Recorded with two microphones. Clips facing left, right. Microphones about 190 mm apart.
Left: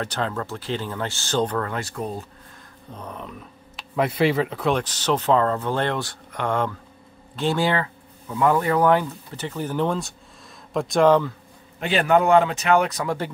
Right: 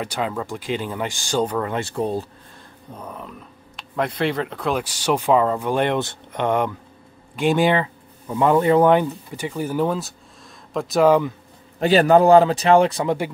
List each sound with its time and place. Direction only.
0.0 s speech: 10° right (ahead or behind)
1.7 s speech: 25° right (ahead or behind)
2.9 s speech: 5° right (ahead or behind); by 9.0 s 25° right (ahead or behind)
9.3 s speech: 10° right (ahead or behind)
11.8 s speech: 35° right (ahead or behind)